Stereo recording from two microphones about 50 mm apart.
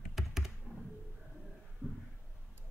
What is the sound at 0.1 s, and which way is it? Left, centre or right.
Computer keyboard, centre.